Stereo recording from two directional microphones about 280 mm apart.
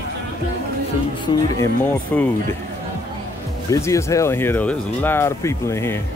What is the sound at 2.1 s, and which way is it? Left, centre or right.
Speech, centre.